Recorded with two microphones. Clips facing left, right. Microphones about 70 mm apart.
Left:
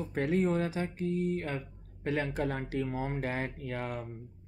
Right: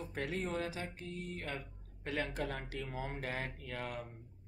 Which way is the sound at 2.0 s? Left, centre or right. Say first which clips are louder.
Left 6 dB; left.